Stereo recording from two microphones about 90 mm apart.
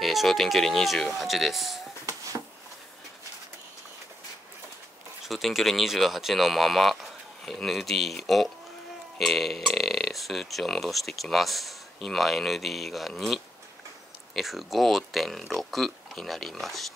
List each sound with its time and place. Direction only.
0.0 s speech: centre (ahead or behind)
2.0 s a sound: 40° right (ahead or behind)
5.2 s speech: centre (ahead or behind)